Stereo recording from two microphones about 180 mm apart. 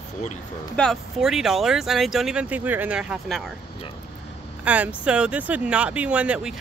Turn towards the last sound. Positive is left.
turn(degrees=-5)  # may be behind; listen again after turning